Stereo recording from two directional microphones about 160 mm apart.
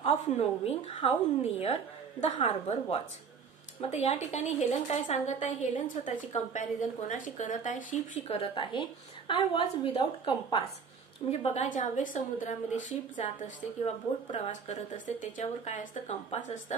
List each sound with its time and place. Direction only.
0.0 s a woman's voice: 40° left (ahead or behind)
8.4 s speech: 30° left (ahead or behind)
11.4 s a woman's voice: 45° left (ahead or behind)
13.8 s a woman's voice: 40° left (ahead or behind)